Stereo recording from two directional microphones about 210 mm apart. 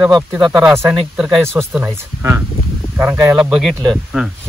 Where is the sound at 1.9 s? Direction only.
10° right (ahead or behind).